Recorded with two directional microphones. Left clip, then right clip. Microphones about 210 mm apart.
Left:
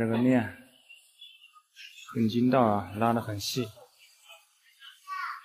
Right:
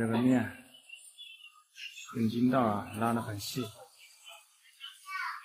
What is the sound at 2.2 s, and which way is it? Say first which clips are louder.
A man's voice: left 5 dB; 30° left (ahead or behind).